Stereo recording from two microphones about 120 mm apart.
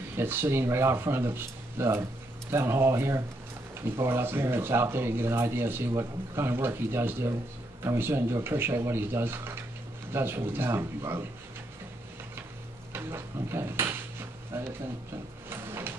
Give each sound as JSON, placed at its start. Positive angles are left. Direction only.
{"t": 0.2, "sound": "speech", "side_deg": -20}
{"t": 12.9, "sound": "speech", "side_deg": -20}
{"t": 15.5, "sound": "a sound", "side_deg": -20}